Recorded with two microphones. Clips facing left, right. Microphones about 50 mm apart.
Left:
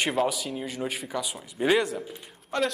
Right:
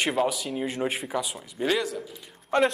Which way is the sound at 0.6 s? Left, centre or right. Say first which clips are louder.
Right 4 dB; centre.